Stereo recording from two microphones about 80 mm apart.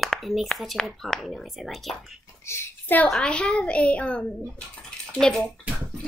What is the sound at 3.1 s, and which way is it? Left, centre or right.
A woman's voice, centre.